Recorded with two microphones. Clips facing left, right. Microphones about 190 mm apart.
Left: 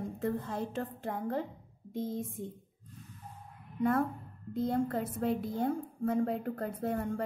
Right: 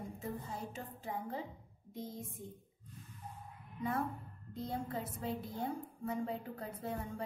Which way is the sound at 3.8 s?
70° left (ahead or behind).